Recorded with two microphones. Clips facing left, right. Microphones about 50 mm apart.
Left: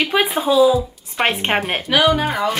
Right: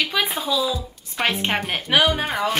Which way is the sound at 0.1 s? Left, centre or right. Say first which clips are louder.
Left 8 dB; left.